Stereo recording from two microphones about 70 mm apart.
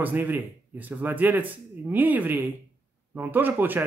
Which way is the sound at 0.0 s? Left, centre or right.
Right.